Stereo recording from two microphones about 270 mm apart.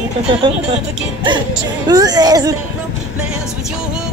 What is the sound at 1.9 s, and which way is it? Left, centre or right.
Speech, centre.